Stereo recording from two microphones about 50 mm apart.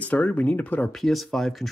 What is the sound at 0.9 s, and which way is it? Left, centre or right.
Speech, centre.